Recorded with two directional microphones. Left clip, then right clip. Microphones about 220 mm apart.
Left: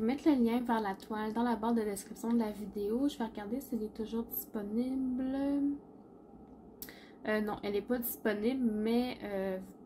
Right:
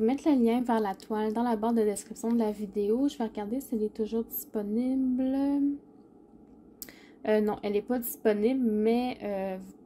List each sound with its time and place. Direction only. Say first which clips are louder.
0.0 s speech: right 5 dB; 35° right (ahead or behind)
7.2 s speech: right 7 dB; 35° right (ahead or behind)